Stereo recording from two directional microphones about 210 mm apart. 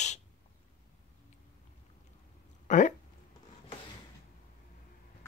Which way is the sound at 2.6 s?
35° left (ahead or behind).